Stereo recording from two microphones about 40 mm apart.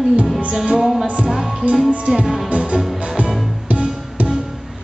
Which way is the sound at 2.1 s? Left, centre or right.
Right.